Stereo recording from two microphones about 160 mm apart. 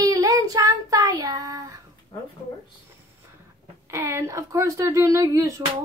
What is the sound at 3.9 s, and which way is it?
A woman's voice, 15° right (ahead or behind).